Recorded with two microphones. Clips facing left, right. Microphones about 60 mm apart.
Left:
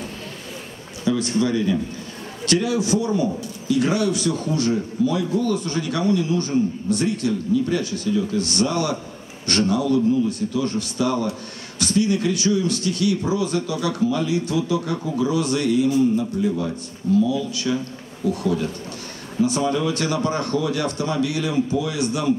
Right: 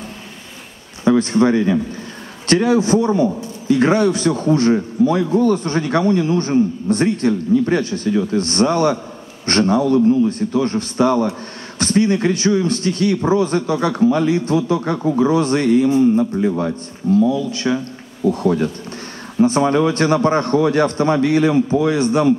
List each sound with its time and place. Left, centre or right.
1.0 s a man's voice: right